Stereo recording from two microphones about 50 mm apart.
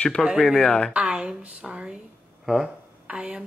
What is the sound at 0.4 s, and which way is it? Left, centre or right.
Speech, centre.